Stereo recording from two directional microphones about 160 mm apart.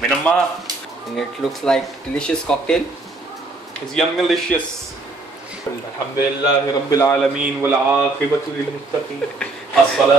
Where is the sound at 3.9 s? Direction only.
Centre (ahead or behind).